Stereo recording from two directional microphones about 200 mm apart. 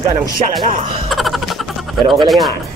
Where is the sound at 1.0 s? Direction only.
Centre (ahead or behind).